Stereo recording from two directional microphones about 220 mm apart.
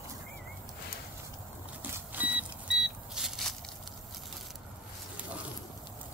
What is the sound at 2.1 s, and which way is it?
Vehicle, 5° right (ahead or behind).